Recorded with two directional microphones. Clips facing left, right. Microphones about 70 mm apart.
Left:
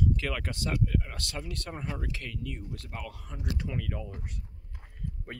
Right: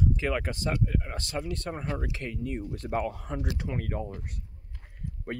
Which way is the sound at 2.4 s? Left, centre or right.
Right.